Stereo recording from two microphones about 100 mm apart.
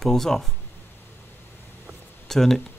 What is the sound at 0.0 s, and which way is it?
Speech, 5° left (ahead or behind).